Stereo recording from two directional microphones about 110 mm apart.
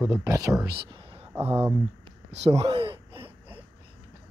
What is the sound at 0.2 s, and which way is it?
Speech, 30° right (ahead or behind).